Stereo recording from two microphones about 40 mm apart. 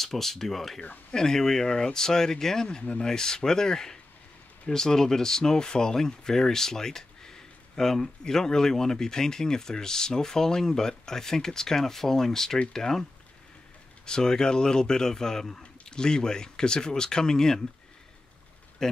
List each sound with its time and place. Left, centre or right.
0.0 s speech: centre
14.0 s speech: centre
18.8 s a sound: centre